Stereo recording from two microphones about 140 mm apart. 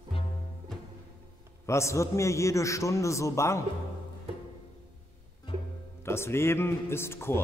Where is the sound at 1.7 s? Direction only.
20° left (ahead or behind).